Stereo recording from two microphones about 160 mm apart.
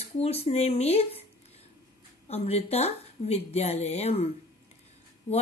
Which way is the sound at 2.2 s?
40° left (ahead or behind).